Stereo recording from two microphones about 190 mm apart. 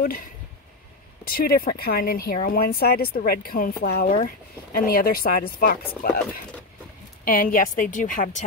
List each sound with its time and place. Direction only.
0.0 s speech: 45° left (ahead or behind)
7.2 s speech: 45° left (ahead or behind)